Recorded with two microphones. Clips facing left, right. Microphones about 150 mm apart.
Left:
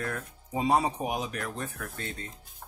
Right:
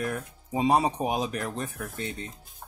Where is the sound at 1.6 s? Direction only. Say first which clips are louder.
Right 3 dB; 15° right (ahead or behind).